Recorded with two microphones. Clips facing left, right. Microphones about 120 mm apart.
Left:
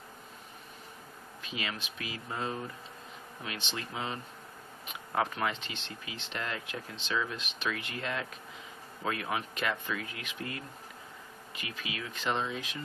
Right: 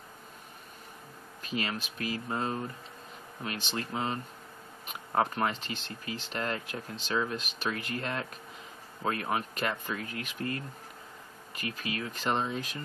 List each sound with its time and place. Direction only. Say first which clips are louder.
1.4 s speech: right 4 dB; 45° right (ahead or behind)